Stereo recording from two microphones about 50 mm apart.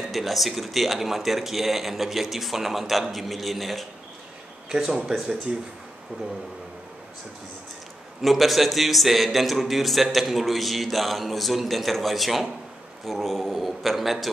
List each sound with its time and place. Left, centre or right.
0.1 s a man's voice: centre
5.5 s speech: right
8.2 s a man's voice: centre